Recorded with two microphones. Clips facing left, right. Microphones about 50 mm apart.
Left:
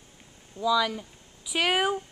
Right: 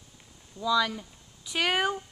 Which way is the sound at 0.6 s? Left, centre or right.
Centre.